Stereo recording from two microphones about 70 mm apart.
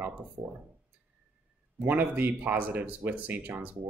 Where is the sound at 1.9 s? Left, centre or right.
Right.